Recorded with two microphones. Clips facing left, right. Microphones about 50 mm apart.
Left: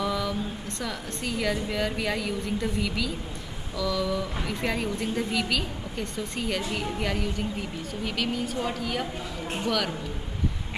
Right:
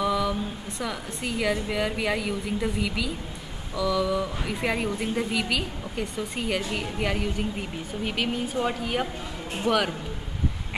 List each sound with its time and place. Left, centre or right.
0.0 s a man's voice: centre